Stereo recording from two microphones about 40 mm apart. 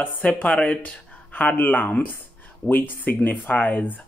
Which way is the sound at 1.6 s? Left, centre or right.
Left.